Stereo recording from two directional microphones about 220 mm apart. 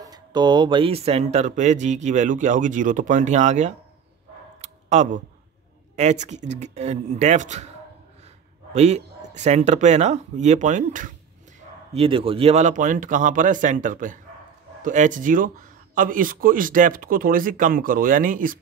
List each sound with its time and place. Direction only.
0.0 s speech: 20° right (ahead or behind)
4.6 s a sound: 30° right (ahead or behind)
5.9 s speech: 30° right (ahead or behind)
8.7 s speech: 30° right (ahead or behind)
11.9 s speech: 25° right (ahead or behind)